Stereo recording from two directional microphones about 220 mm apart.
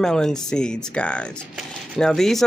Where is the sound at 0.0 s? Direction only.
5° left (ahead or behind).